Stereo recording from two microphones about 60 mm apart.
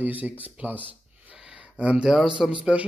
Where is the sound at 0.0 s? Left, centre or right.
Right.